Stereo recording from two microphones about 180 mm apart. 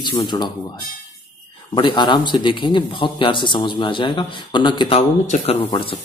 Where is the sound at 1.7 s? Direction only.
25° left (ahead or behind).